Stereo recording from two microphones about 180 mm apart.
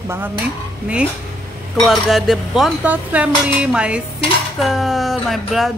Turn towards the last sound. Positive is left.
turn(degrees=0)  # may be behind; listen again after turning